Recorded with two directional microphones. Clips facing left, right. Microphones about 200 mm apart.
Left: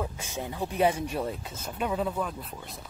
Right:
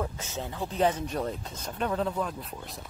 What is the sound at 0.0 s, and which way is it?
Speech, 15° left (ahead or behind).